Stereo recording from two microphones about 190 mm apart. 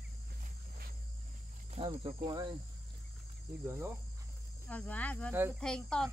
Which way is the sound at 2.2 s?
20° right (ahead or behind).